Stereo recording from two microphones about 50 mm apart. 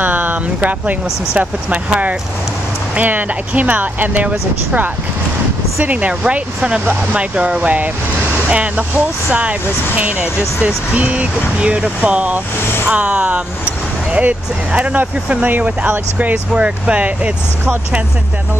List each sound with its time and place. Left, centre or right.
0.0 s a sound: right
1.4 s speech: right
10.6 s speech: right
15.0 s speech: right
16.5 s speech: right